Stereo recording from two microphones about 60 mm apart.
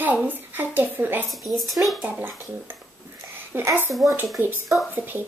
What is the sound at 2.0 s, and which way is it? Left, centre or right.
Speech, right.